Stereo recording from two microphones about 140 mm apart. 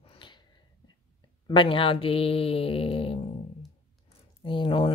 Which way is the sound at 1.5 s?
35° left (ahead or behind).